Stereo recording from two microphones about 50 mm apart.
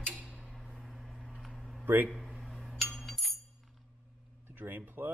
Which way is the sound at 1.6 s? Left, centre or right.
Centre.